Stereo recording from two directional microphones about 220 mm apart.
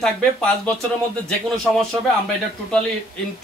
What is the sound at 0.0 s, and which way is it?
Speech, 5° left (ahead or behind).